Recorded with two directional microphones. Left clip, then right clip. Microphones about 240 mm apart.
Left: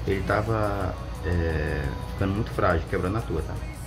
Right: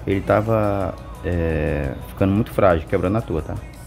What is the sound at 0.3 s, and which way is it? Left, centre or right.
Speech, right.